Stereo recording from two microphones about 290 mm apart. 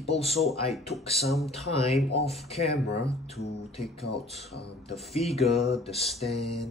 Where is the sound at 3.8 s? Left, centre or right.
Centre.